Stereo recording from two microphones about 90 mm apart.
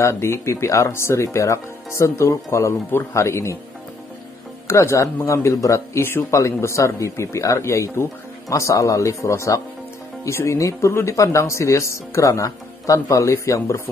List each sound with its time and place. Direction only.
0.0 s speech: 30° left (ahead or behind)
4.6 s speech: 35° left (ahead or behind)